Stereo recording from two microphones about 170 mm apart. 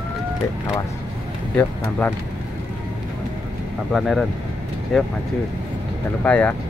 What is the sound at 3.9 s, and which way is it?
Speech, centre (ahead or behind).